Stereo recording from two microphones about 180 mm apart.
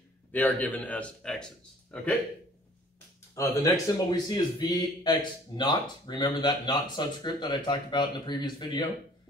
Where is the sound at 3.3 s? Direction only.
15° left (ahead or behind).